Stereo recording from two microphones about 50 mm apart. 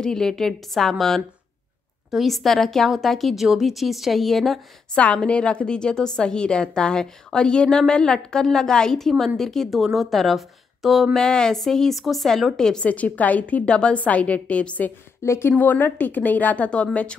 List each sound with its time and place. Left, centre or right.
0.0 s a woman's voice: centre
4.9 s a woman's voice: left; by 11.1 s centre
11.1 s a woman's voice: centre
12.8 s a woman's voice: left
15.2 s speech: left
15.5 s a woman's voice: left